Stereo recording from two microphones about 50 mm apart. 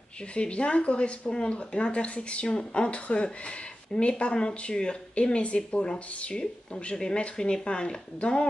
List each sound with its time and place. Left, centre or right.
0.3 s speech: left